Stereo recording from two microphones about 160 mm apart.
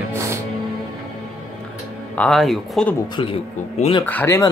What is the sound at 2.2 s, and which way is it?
Speech, centre (ahead or behind).